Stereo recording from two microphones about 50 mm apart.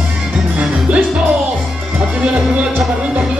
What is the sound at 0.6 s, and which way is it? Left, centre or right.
Music, right.